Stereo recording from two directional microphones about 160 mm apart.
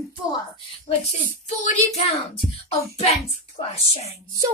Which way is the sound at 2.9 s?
40° left (ahead or behind).